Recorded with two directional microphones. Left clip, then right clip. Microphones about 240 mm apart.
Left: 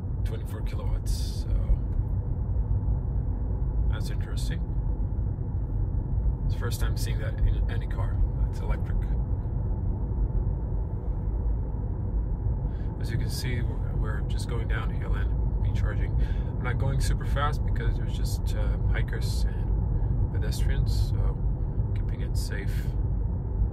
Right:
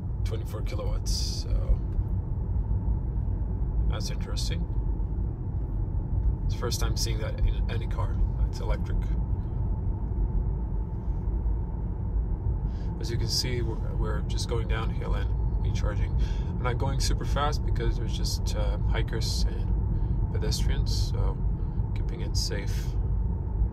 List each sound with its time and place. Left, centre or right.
6.6 s speech: right
13.1 s speech: right
16.6 s speech: right
20.4 s speech: right